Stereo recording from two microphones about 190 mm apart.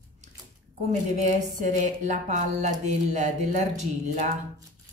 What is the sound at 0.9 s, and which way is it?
A woman's voice, 40° right (ahead or behind).